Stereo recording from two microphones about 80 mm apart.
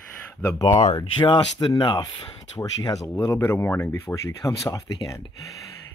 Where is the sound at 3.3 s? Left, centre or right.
Left.